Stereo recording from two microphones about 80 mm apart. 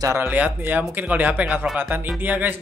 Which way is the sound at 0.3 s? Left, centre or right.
Right.